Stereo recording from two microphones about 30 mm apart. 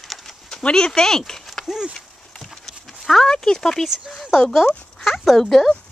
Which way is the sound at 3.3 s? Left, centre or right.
Left.